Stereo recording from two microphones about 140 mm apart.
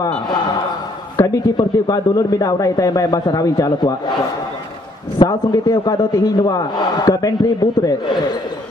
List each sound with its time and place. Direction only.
1.1 s a sound: 25° left (ahead or behind)
1.6 s speech: 25° left (ahead or behind)
5.2 s speech: 25° left (ahead or behind)